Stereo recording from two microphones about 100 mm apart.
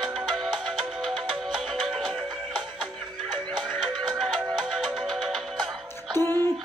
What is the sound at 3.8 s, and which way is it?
Music, 5° right (ahead or behind).